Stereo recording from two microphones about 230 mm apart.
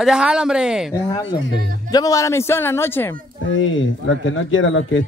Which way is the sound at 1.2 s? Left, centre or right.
Left.